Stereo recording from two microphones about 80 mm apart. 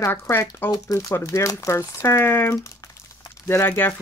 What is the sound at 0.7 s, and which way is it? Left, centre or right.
Speech, left.